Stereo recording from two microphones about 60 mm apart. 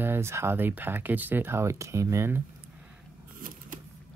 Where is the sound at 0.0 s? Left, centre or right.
Right.